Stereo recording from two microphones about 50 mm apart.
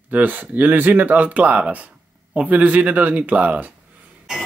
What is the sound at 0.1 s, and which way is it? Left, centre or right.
Speech, right.